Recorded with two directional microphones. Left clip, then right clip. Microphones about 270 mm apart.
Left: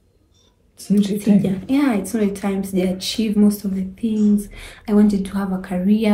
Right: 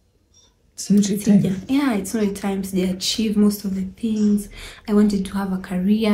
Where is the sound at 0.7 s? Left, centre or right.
Right.